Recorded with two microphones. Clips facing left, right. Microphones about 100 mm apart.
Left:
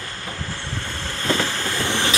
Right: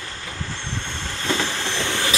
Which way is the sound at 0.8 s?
Centre (ahead or behind).